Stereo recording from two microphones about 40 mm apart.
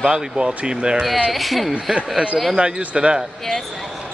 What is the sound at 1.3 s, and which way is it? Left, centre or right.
Speech, centre.